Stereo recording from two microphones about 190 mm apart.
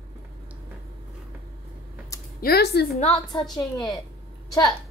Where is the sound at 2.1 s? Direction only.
15° left (ahead or behind).